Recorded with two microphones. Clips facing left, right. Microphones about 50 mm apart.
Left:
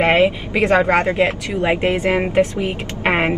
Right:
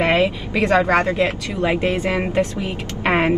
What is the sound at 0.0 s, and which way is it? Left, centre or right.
Speech, left.